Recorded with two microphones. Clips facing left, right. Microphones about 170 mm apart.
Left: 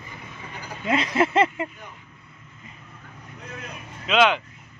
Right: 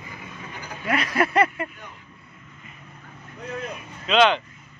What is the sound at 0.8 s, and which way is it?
Speech, 20° left (ahead or behind).